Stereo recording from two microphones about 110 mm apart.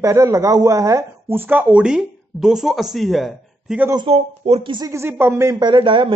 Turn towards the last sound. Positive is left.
turn(degrees=-50)  # may be behind; listen again after turning